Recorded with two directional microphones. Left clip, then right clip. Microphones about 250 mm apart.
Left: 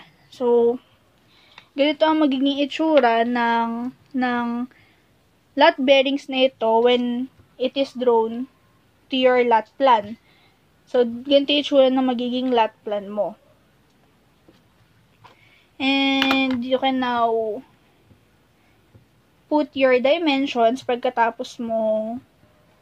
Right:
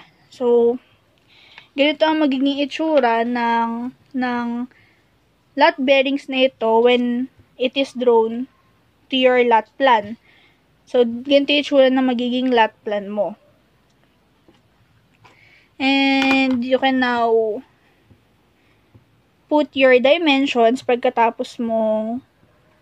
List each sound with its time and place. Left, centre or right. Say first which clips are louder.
0.0 s a sound: right 2 dB; centre
1.3 s a woman's voice: right 4 dB; centre
15.8 s speech: right 3 dB; right
19.5 s speech: right 4 dB; right